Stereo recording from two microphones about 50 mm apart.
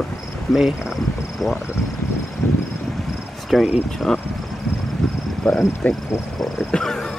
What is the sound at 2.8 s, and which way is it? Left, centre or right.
Cricket, centre.